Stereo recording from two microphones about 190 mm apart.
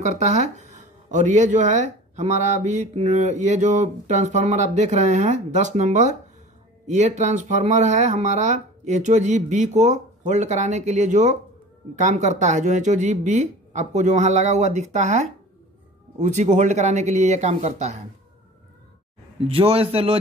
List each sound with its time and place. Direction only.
0.0 s speech: 35° right (ahead or behind)
19.4 s speech: 30° right (ahead or behind)